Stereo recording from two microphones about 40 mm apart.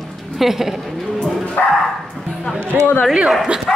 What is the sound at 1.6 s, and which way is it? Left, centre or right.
Bow-wow, left.